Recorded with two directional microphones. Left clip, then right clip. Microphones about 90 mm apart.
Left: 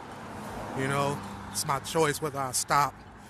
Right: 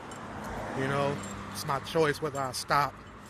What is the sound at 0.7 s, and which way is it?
Speech, 30° left (ahead or behind).